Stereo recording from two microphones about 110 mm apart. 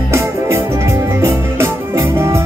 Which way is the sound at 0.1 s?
25° right (ahead or behind).